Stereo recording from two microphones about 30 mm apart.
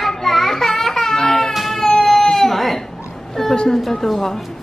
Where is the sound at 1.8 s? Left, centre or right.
Left.